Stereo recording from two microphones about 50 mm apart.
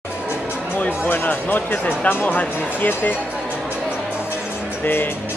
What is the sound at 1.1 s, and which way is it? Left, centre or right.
Speech, left.